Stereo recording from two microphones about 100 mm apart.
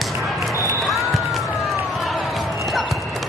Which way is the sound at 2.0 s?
Centre (ahead or behind).